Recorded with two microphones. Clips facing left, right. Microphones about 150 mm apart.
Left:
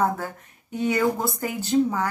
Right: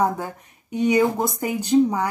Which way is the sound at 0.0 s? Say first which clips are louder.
Right 2 dB; 15° right (ahead or behind).